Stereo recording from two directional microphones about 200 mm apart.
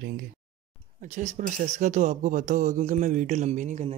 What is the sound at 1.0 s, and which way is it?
Speech, 35° right (ahead or behind).